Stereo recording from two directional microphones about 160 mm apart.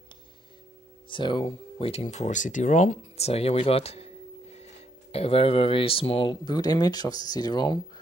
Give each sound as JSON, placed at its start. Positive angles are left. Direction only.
{"t": 1.0, "sound": "speech", "side_deg": 30}